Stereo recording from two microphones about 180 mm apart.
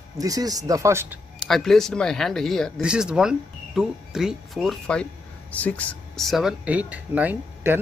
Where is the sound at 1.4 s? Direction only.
Centre (ahead or behind).